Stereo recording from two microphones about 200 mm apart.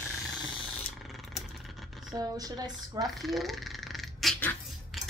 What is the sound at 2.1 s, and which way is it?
Speech, 20° right (ahead or behind).